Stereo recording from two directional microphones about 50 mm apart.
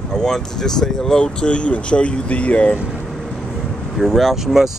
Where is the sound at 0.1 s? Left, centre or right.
Centre.